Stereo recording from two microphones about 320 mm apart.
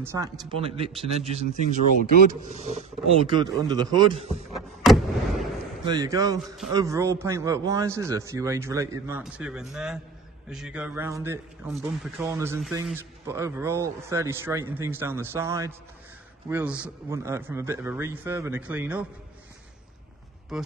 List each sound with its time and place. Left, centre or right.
0.0 s a man's voice: centre
4.6 s vehicle: centre
5.9 s a man's voice: centre
20.5 s speech: centre